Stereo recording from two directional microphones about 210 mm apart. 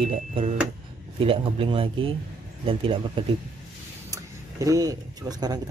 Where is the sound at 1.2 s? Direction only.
25° right (ahead or behind).